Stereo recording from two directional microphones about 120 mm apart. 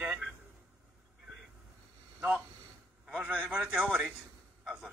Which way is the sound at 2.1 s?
10° right (ahead or behind).